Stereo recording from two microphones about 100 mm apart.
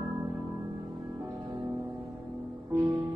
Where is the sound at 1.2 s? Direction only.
45° right (ahead or behind).